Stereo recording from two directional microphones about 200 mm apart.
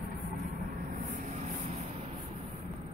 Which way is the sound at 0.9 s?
40° right (ahead or behind).